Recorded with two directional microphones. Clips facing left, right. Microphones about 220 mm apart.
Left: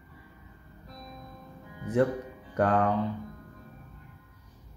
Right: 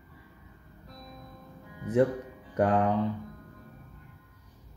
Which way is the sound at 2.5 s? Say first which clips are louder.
Even; 15° right (ahead or behind).